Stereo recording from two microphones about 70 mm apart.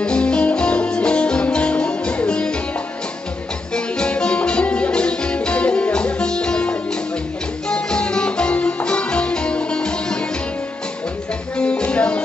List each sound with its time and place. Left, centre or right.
0.0 s music: centre
3.7 s music: centre
11.5 s music: centre